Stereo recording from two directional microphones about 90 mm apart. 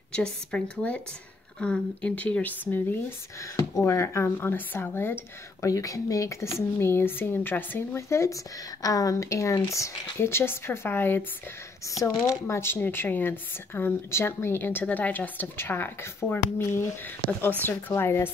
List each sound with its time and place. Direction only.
0.1 s speech: 10° left (ahead or behind)
3.8 s speech: 30° left (ahead or behind)
5.7 s speech: 40° left (ahead or behind); by 11.2 s 25° left (ahead or behind)
12.0 s speech: 40° left (ahead or behind)
12.5 s speech: 25° left (ahead or behind)